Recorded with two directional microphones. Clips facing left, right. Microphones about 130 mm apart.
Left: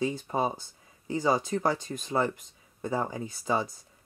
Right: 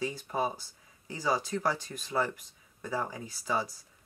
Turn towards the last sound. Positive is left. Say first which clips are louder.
# left 4 dB
turn(degrees=25)  # may be behind; listen again after turning